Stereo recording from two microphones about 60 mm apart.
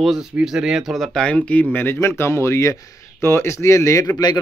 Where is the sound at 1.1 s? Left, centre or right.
Centre; by 4.0 s left.